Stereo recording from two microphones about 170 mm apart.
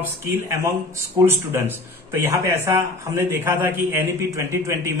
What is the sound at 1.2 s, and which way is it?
Speech, 15° right (ahead or behind).